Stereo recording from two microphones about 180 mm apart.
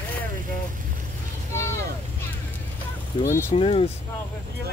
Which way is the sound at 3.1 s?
25° left (ahead or behind).